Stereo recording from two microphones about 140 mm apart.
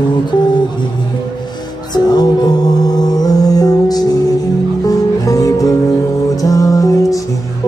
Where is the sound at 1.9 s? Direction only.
30° left (ahead or behind).